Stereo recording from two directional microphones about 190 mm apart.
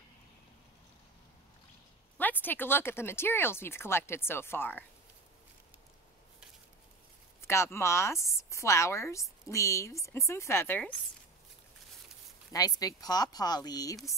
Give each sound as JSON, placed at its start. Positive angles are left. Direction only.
{"t": 2.1, "sound": "speech", "side_deg": 10}
{"t": 7.4, "sound": "speech", "side_deg": 15}
{"t": 12.5, "sound": "speech", "side_deg": 20}